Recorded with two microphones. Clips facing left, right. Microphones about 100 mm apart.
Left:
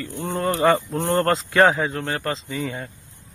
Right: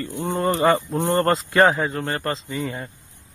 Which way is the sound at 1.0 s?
15° right (ahead or behind).